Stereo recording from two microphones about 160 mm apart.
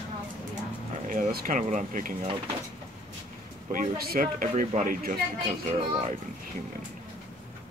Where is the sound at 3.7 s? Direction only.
60° right (ahead or behind).